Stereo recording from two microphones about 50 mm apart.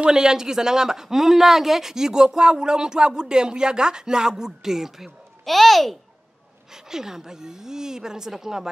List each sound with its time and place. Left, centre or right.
0.0 s a child's voice: centre
6.7 s speech: centre